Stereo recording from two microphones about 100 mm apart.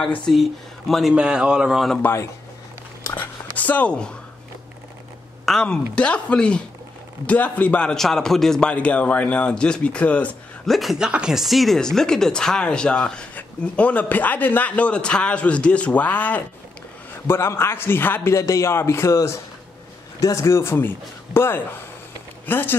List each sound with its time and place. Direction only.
0.3 s speech: centre (ahead or behind)
3.5 s speech: 15° left (ahead or behind)
5.4 s speech: 5° left (ahead or behind)
10.7 s a man's voice: centre (ahead or behind); by 22.8 s 20° left (ahead or behind)